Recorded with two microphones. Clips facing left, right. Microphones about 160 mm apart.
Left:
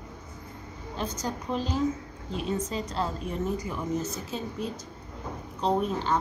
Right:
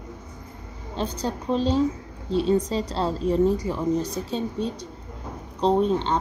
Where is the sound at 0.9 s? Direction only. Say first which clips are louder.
Right 5 dB; 30° right (ahead or behind).